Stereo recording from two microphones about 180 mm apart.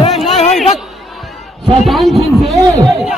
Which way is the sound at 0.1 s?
Centre (ahead or behind).